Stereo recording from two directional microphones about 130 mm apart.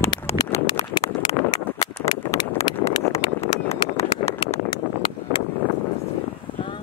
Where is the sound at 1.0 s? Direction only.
35° left (ahead or behind).